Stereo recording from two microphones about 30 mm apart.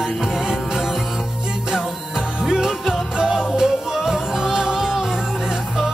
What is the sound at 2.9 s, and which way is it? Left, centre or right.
Music, centre.